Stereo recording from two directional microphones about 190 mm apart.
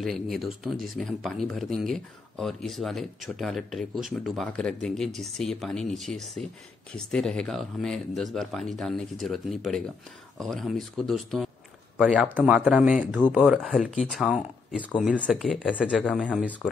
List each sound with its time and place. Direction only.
0.0 s speech: centre (ahead or behind)